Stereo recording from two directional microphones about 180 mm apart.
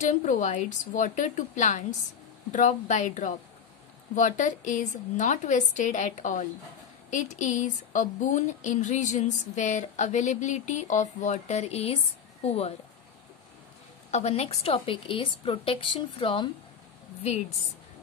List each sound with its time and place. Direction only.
0.0 s a woman's voice: 40° left (ahead or behind)
14.1 s speech: 35° left (ahead or behind)